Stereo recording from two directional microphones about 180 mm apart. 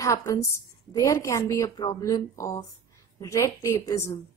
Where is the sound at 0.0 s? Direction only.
15° left (ahead or behind).